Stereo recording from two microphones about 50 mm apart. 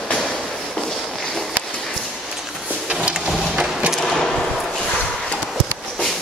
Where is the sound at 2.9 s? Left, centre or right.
Centre.